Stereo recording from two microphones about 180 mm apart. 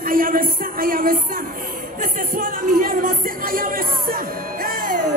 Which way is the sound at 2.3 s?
50° right (ahead or behind).